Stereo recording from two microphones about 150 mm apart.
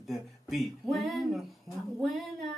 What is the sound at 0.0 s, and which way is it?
Speech, centre (ahead or behind).